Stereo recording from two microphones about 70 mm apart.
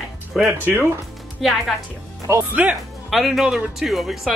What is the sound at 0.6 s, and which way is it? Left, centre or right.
Speech, right.